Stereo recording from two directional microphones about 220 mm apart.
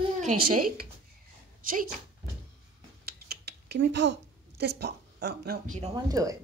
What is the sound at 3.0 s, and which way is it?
Typing, 45° right (ahead or behind).